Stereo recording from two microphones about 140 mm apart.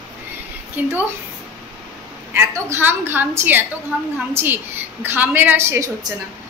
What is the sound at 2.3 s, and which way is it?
A woman's voice, 15° right (ahead or behind).